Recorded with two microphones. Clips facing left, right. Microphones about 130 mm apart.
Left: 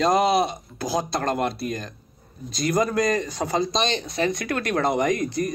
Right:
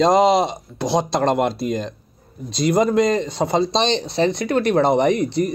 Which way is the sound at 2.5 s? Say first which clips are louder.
Right 6 dB; 25° right (ahead or behind).